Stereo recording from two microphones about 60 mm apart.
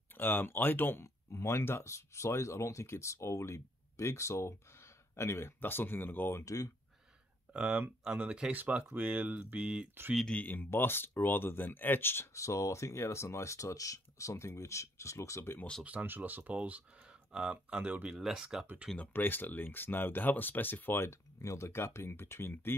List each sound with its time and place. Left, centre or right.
0.1 s speech: left
1.0 s speech: left
5.6 s speech: left
6.4 s speech: left
7.5 s speech: centre
10.4 s speech: left
12.4 s speech: left
15.8 s speech: right; by 18.7 s centre
18.9 s speech: left
20.9 s speech: left